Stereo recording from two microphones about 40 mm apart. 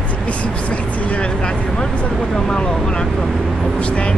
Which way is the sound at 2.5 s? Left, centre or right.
Centre.